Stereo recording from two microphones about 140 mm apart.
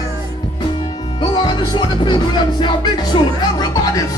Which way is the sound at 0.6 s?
35° left (ahead or behind).